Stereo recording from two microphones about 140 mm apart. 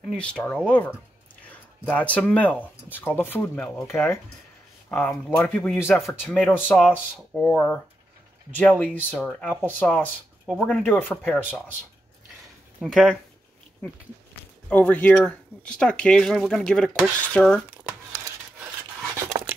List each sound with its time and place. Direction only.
0.2 s speech: 10° left (ahead or behind)
3.8 s speech: 20° left (ahead or behind)
9.9 s speech: 5° right (ahead or behind)
10.6 s speech: 10° left (ahead or behind)
12.8 s speech: centre (ahead or behind)
14.7 s speech: 10° left (ahead or behind)
19.1 s a sound: 20° right (ahead or behind)